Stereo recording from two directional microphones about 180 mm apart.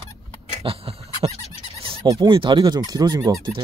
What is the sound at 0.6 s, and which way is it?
Goat, 30° right (ahead or behind).